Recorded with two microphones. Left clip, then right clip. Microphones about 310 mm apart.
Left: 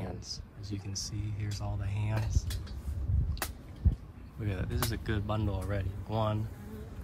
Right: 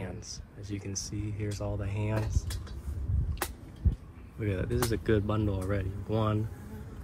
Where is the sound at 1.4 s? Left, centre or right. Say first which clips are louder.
Right 7 dB; centre.